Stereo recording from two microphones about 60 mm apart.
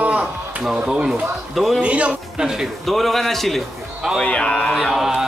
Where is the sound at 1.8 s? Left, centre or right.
Right.